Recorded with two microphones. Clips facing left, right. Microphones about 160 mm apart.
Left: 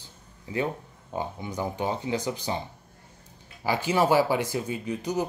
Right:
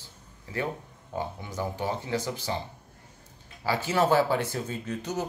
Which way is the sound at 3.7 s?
15° left (ahead or behind).